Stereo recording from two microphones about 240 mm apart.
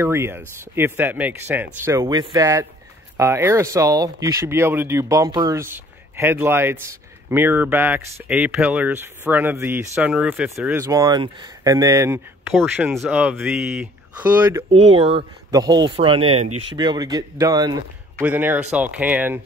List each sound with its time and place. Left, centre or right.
0.0 s speech: centre
14.6 s speech: right; by 19.4 s centre